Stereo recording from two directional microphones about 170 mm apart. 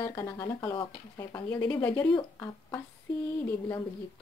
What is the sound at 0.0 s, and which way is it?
Speech, 15° left (ahead or behind).